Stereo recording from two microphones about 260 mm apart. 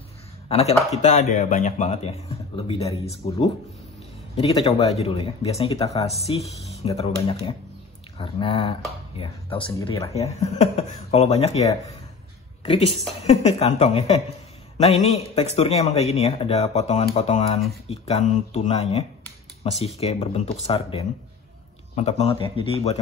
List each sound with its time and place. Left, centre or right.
0.5 s a man's voice: left